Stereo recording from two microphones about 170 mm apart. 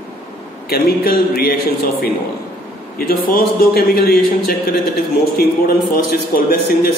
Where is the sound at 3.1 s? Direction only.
60° left (ahead or behind).